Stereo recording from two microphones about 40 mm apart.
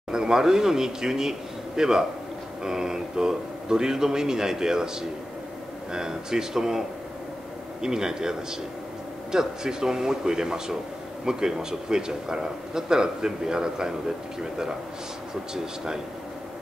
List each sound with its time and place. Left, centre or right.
0.1 s a man's voice: centre
5.9 s a man's voice: centre
7.8 s a man's voice: centre
15.5 s a man's voice: centre